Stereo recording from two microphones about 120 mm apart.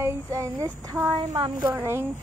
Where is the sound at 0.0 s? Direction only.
25° right (ahead or behind).